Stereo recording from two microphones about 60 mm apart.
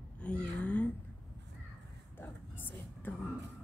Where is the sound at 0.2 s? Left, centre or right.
Centre.